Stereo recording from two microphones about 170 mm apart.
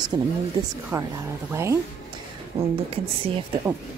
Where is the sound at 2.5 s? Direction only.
35° right (ahead or behind).